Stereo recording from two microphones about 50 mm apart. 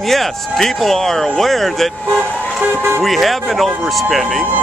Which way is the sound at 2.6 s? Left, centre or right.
Right.